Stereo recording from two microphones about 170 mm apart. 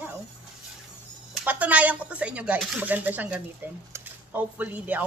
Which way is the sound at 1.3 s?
10° right (ahead or behind).